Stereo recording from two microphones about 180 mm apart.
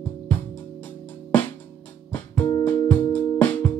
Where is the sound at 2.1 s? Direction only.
10° left (ahead or behind).